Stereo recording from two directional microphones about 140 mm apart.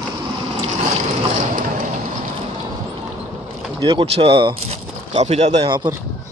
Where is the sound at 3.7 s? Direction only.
35° right (ahead or behind).